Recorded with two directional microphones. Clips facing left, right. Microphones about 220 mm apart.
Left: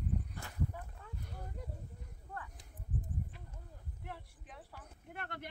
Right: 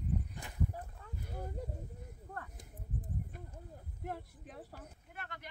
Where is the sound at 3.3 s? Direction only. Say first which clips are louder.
Right 6 dB; 50° right (ahead or behind).